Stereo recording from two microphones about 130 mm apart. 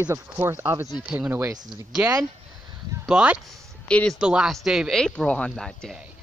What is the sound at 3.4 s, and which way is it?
Speech, 5° left (ahead or behind).